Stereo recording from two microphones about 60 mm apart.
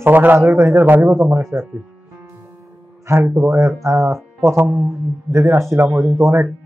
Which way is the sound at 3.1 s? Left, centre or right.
Right.